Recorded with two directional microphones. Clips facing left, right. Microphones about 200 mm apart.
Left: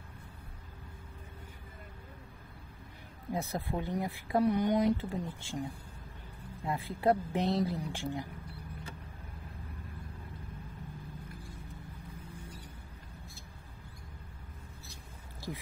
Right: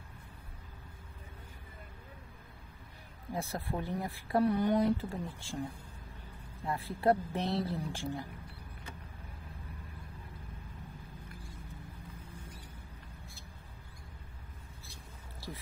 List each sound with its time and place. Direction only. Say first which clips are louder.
3.3 s speech: left 1 dB; 20° left (ahead or behind)
6.6 s speech: even; 15° left (ahead or behind)